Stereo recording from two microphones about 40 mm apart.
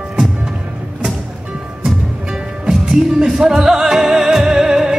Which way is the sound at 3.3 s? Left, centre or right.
Centre.